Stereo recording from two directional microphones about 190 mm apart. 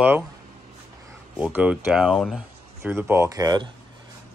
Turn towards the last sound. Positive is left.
turn(degrees=-20)  # may be behind; listen again after turning